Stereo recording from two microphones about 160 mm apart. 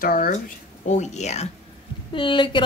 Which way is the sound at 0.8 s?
45° left (ahead or behind).